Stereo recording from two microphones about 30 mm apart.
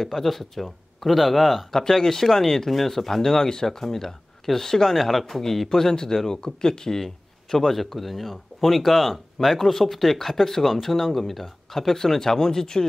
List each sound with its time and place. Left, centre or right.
0.0 s speech: centre
1.7 s speech: centre
7.5 s speech: centre; by 12.8 s left